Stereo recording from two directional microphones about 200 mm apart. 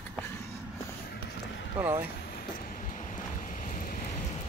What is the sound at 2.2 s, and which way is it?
Vehicle, 45° left (ahead or behind).